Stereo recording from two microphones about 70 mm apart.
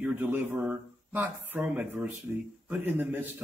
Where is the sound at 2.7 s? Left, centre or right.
Right.